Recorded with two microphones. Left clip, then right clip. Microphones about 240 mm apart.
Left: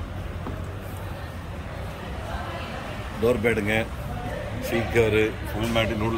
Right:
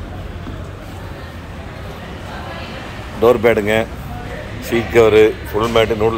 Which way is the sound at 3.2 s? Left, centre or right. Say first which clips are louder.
Right 10 dB; centre.